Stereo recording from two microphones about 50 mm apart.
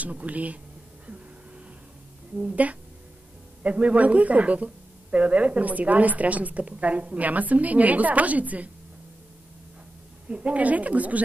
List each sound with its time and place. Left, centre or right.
0.0 s speech: right
2.5 s speech: right
10.2 s speech: right